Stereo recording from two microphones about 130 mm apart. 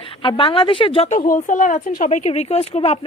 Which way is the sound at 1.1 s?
85° left.